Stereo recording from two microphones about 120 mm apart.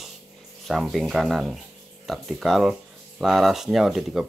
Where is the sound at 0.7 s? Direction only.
Centre (ahead or behind).